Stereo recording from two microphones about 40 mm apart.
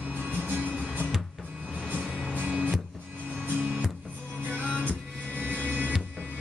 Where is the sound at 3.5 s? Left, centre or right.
Right.